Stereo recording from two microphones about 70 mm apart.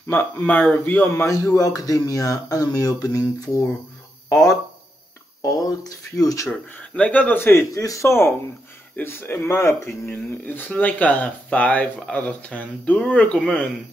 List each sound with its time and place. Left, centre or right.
0.0 s speech: left
1.2 s speech: left
4.3 s speech: left
5.4 s speech: left
6.5 s speech: centre
7.4 s speech: left
8.1 s speech: left
9.7 s speech: left
10.1 s speech: left